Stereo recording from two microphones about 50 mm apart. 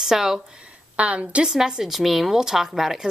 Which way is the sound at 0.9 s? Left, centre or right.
Right.